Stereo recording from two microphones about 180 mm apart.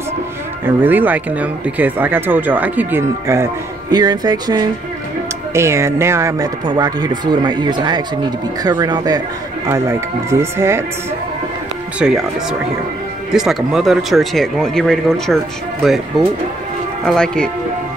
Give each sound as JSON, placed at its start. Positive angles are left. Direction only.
{"t": 0.7, "sound": "speech", "side_deg": -10}
{"t": 12.0, "sound": "speech", "side_deg": -5}